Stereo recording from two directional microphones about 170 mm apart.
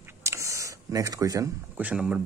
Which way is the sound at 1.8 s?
5° right (ahead or behind).